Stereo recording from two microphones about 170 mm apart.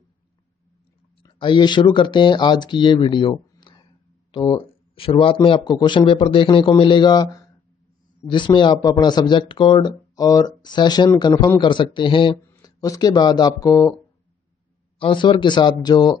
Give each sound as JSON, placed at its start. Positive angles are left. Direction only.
{"t": 1.2, "sound": "a man's voice", "side_deg": 25}
{"t": 15.0, "sound": "a man's voice", "side_deg": 30}